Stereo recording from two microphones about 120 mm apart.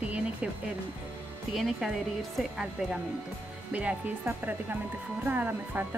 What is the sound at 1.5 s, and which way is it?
Speech, centre (ahead or behind).